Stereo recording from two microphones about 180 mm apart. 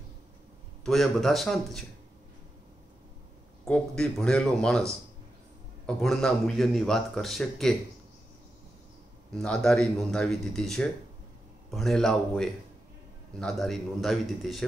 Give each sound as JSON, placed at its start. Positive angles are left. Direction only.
{"t": 0.8, "sound": "a man's voice", "side_deg": 0}
{"t": 3.6, "sound": "a man's voice", "side_deg": 5}
{"t": 9.3, "sound": "a man's voice", "side_deg": 5}